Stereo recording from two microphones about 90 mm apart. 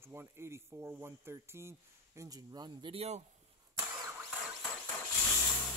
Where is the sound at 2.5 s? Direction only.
50° right (ahead or behind).